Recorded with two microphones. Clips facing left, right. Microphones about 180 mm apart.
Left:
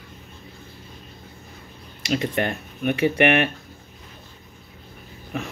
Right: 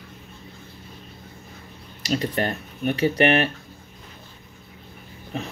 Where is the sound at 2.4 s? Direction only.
35° right (ahead or behind).